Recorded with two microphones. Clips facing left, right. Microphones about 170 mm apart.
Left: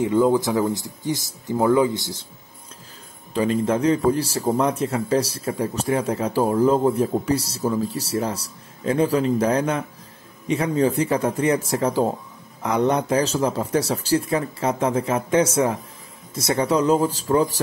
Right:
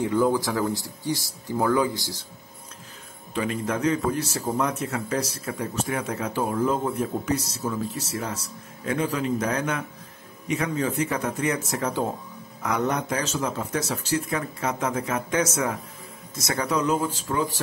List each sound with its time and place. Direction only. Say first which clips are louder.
0.0 s speech: left 4 dB; 20° left (ahead or behind)
3.3 s speech: left 6 dB; 30° left (ahead or behind)